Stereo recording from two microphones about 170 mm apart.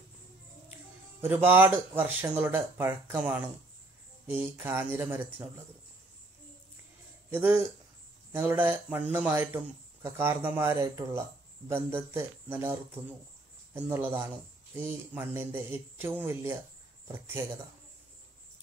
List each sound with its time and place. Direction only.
1.2 s speech: 10° right (ahead or behind)
7.2 s speech: 10° right (ahead or behind)
13.7 s speech: 10° right (ahead or behind)